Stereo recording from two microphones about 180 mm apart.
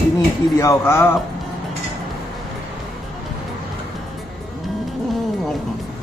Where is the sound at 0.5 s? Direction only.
15° left (ahead or behind).